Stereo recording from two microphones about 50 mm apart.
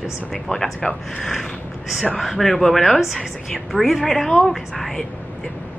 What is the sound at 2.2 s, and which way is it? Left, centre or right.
A woman's voice, centre.